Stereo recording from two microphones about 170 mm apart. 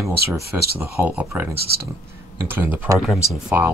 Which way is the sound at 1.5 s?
65° right (ahead or behind).